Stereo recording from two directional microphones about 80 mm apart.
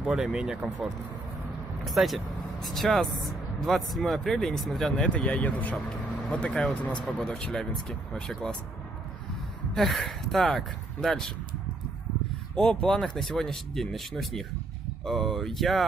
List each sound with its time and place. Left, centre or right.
0.0 s speech: centre
1.9 s speech: centre
9.8 s speech: centre
12.5 s speech: centre